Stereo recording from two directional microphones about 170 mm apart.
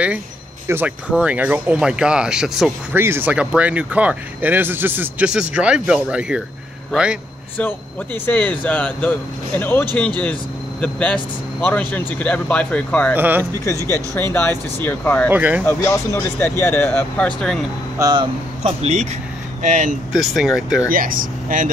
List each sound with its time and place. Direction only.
0.7 s speech: 10° right (ahead or behind)
7.5 s speech: 10° left (ahead or behind)
13.1 s speech: 10° right (ahead or behind)
13.4 s speech: 15° left (ahead or behind)
15.2 s speech: 10° right (ahead or behind)
15.6 s speech: 15° left (ahead or behind)
17.4 s speech: centre (ahead or behind)
17.9 s speech: 20° right (ahead or behind)
18.6 s speech: 40° right (ahead or behind)
20.1 s speech: centre (ahead or behind)
20.9 s speech: 55° right (ahead or behind)